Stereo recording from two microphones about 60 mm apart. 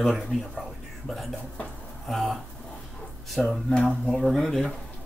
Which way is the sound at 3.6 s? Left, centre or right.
Centre.